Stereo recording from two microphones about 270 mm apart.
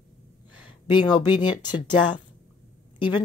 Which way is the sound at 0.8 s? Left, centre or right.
Centre.